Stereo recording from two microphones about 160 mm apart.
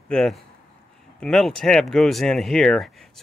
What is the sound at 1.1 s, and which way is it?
Speech, 5° left (ahead or behind).